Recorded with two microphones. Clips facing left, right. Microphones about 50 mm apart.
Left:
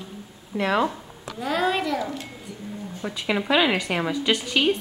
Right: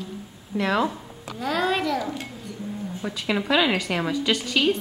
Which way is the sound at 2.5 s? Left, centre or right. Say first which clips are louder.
Right 2 dB; centre.